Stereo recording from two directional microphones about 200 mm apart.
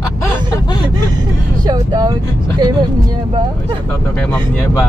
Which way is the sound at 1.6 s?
20° right (ahead or behind).